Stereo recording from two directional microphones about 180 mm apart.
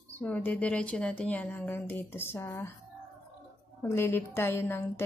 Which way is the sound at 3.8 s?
15° left (ahead or behind).